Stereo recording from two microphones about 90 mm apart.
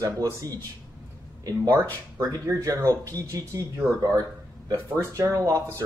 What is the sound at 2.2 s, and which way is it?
Speech, 40° right (ahead or behind).